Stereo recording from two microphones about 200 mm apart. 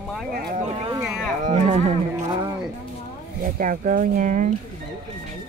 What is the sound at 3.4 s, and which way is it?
Speech, 45° right (ahead or behind).